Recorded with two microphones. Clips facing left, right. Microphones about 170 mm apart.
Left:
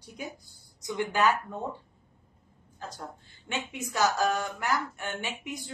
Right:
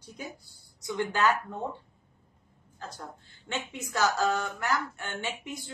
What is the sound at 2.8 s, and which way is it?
A woman's voice, 15° left (ahead or behind).